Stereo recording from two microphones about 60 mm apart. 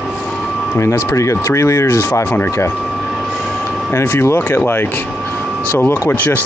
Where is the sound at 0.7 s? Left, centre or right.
Left.